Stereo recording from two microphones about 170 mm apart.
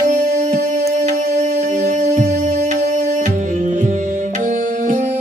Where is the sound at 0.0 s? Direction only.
45° right (ahead or behind).